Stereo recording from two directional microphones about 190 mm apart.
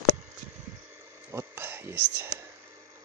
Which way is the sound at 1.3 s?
10° right (ahead or behind).